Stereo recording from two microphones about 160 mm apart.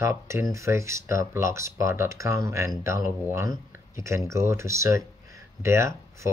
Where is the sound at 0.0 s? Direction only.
15° right (ahead or behind).